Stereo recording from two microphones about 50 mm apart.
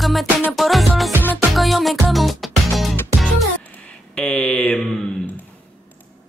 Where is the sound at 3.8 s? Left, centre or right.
Centre.